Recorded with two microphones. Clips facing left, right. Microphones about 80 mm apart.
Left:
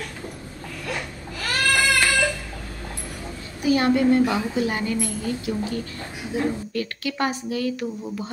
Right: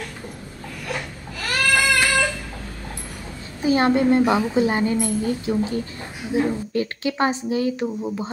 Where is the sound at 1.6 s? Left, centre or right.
Right.